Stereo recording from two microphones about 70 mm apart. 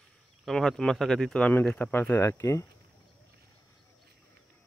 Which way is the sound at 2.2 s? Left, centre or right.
Left.